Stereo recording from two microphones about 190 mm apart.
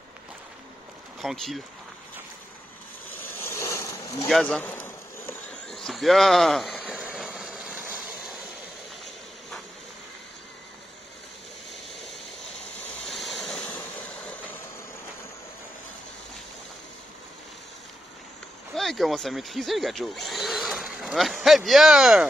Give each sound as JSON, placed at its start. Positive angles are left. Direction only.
{"t": 1.2, "sound": "speech", "side_deg": 0}
{"t": 3.4, "sound": "boat", "side_deg": 15}
{"t": 4.3, "sound": "a sound", "side_deg": 5}
{"t": 5.8, "sound": "vehicle", "side_deg": 0}
{"t": 13.0, "sound": "vehicle", "side_deg": 0}
{"t": 18.8, "sound": "speech", "side_deg": 0}